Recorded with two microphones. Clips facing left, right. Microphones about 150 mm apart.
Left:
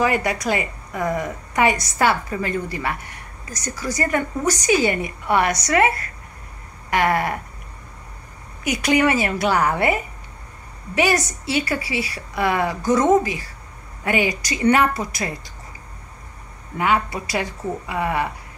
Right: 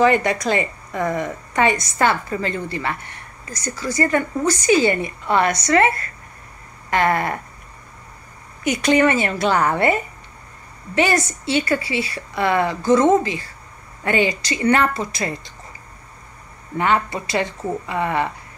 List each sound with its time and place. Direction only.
0.0 s a woman's voice: 10° left (ahead or behind)
8.6 s a woman's voice: 10° left (ahead or behind)
16.7 s a woman's voice: 5° left (ahead or behind)